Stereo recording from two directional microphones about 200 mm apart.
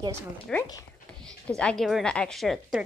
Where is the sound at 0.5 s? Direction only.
5° left (ahead or behind).